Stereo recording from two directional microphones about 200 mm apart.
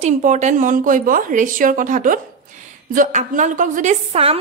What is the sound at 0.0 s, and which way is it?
A woman's voice, 35° right (ahead or behind).